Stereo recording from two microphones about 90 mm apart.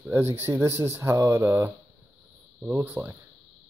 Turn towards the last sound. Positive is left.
turn(degrees=-25)  # may be behind; listen again after turning